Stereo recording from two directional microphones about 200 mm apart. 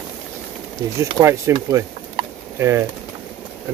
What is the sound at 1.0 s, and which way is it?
Speech, 15° right (ahead or behind).